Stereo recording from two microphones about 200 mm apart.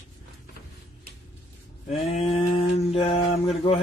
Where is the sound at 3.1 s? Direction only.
30° left (ahead or behind).